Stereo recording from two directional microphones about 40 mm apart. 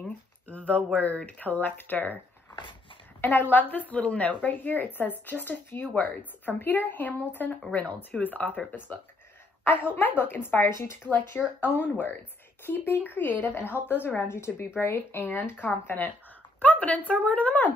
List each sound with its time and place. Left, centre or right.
0.0 s a sound: left
0.9 s speech: left
3.2 s speech: left
4.5 s a woman's voice: left
8.7 s a woman's voice: left
11.9 s a woman's voice: left
13.5 s speech: left
13.7 s speech: left
16.5 s speech: left